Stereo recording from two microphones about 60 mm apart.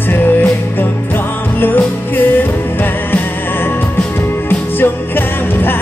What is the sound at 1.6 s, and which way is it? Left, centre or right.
Music, left.